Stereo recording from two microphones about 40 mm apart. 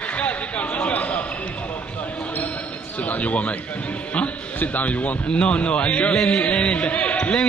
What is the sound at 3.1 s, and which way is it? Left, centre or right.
Speech, left.